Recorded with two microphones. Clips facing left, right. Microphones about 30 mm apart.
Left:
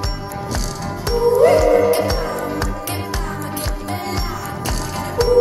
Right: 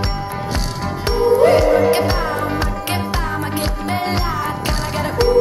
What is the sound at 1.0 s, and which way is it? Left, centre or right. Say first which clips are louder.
Music: even; right.